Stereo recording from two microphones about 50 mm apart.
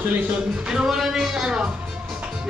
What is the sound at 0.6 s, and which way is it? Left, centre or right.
Speech, centre.